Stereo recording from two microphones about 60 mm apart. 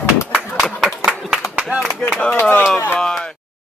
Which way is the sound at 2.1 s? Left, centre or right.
Centre.